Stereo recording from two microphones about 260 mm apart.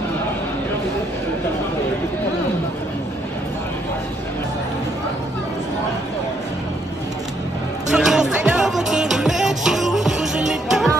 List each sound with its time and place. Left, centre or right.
7.9 s music: centre